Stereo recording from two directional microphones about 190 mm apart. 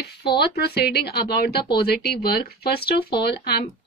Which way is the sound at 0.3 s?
60° left (ahead or behind).